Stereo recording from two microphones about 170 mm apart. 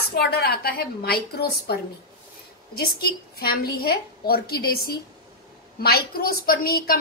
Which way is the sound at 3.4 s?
60° left (ahead or behind).